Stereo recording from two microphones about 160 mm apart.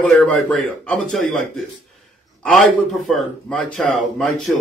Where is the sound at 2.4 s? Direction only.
Centre (ahead or behind).